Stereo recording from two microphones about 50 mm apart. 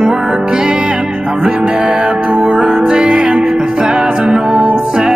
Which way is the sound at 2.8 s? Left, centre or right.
Centre.